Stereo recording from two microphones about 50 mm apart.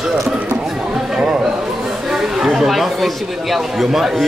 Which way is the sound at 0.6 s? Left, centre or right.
Centre.